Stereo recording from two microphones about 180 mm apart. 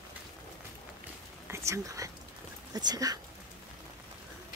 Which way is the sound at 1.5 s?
15° right (ahead or behind).